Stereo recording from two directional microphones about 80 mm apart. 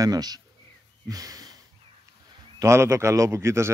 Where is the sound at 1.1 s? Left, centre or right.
Right.